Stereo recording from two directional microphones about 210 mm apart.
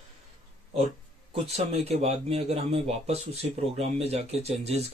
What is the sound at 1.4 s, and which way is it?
Speech, 30° right (ahead or behind).